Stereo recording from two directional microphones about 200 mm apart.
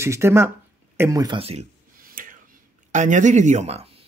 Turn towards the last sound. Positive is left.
turn(degrees=-30)  # may be behind; listen again after turning